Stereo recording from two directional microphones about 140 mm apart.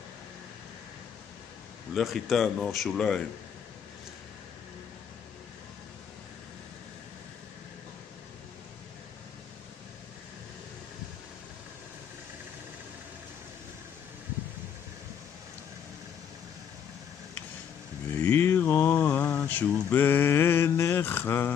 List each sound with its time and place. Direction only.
2.0 s speech: centre (ahead or behind)
18.2 s mantra: 20° left (ahead or behind)